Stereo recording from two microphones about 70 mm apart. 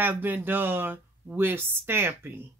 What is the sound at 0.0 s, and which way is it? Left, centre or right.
A woman's voice, right.